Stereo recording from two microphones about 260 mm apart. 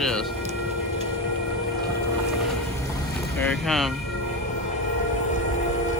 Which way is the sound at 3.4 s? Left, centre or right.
Centre.